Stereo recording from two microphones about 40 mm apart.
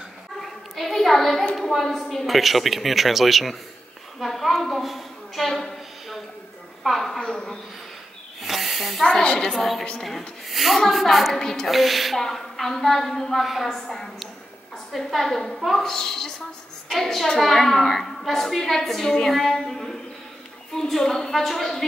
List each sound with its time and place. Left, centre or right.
0.4 s a sound: centre
1.7 s a woman's voice: centre
6.8 s a woman's voice: centre
8.4 s snake: centre
9.0 s a woman's voice: left
9.6 s a woman's voice: centre
11.3 s a woman's voice: centre
11.6 s a woman's voice: centre